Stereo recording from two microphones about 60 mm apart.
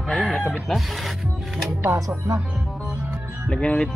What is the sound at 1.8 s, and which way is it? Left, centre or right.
Speech, right.